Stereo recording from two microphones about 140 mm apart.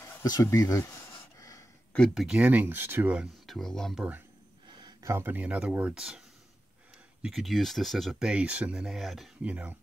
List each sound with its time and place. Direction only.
0.2 s speech: 25° left (ahead or behind)
2.0 s speech: centre (ahead or behind)
3.4 s speech: centre (ahead or behind)
4.8 s speech: 20° right (ahead or behind)